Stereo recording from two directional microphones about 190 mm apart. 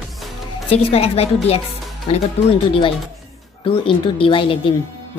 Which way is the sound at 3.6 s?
30° left (ahead or behind).